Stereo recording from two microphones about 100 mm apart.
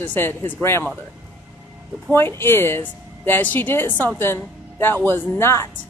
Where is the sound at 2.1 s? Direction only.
25° left (ahead or behind).